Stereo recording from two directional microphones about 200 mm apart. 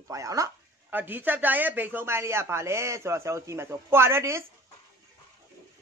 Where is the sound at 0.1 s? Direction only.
15° right (ahead or behind).